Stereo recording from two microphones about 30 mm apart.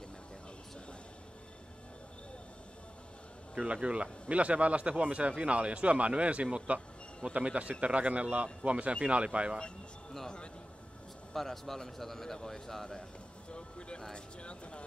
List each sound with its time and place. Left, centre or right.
3.5 s speech: right
10.2 s speech: left
11.3 s a man's voice: centre
13.5 s a sound: left
14.1 s speech: left